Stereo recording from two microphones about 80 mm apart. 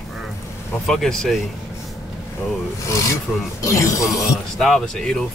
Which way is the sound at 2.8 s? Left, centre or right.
Left.